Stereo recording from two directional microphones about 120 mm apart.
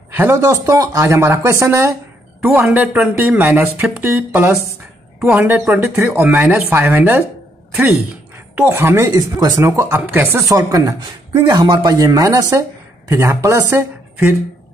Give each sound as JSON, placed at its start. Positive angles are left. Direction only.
{"t": 0.1, "sound": "a man's voice", "side_deg": -20}
{"t": 2.6, "sound": "a man's voice", "side_deg": -10}
{"t": 10.4, "sound": "a man's voice", "side_deg": -25}